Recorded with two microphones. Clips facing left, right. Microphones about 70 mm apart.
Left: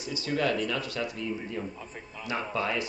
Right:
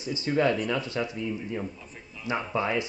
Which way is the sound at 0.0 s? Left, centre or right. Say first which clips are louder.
Right 4 dB; right.